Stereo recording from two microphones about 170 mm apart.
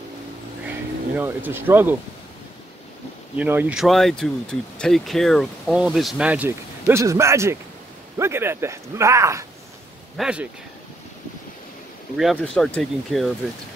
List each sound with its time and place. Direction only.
0.7 s speech: 10° right (ahead or behind)
3.3 s speech: 10° right (ahead or behind)
10.1 s speech: 5° right (ahead or behind)
12.2 s speech: centre (ahead or behind)